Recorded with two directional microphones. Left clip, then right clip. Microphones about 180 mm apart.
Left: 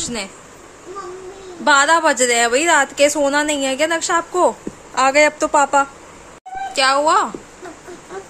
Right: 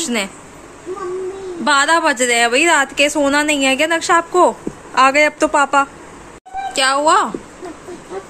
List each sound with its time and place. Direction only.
0.0 s speech: 5° right (ahead or behind)
1.6 s a woman's voice: 5° left (ahead or behind)